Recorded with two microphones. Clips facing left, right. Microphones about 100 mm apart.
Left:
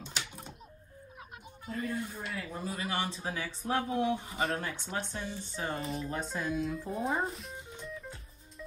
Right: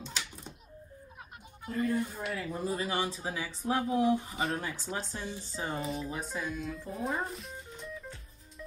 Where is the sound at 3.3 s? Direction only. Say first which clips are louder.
Right 1 dB; 15° right (ahead or behind); by 7.5 s centre (ahead or behind).